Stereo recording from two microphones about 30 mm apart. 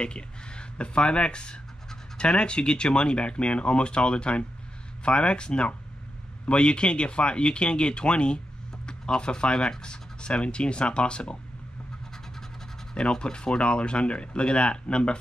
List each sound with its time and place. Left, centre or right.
0.0 s speech: left
12.9 s speech: left